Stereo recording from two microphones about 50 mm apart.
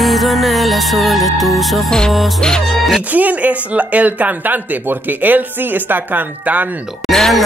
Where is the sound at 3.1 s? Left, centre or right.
Right.